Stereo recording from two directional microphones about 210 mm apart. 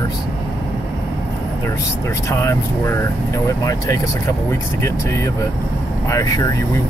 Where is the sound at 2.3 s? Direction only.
15° left (ahead or behind).